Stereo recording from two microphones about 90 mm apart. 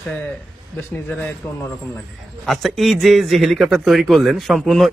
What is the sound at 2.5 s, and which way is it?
Speech, centre (ahead or behind).